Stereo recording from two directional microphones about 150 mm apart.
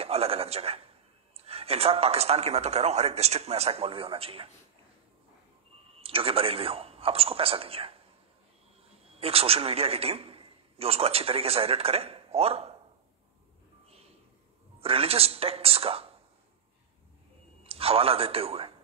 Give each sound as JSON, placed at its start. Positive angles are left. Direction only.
{"t": 0.0, "sound": "a man's voice", "side_deg": -40}
{"t": 5.9, "sound": "a man's voice", "side_deg": -40}
{"t": 9.2, "sound": "a man's voice", "side_deg": -40}
{"t": 14.8, "sound": "a man's voice", "side_deg": -40}
{"t": 17.6, "sound": "a man's voice", "side_deg": -40}